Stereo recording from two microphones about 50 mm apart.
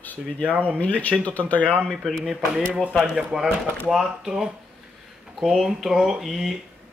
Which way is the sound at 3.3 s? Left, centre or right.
Centre.